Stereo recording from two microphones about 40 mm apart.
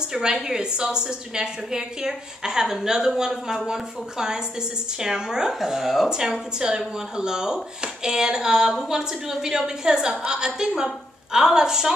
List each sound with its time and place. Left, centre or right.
0.0 s speech: centre
6.0 s a woman's voice: centre